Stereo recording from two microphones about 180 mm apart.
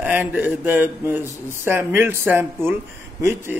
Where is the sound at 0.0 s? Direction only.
10° right (ahead or behind).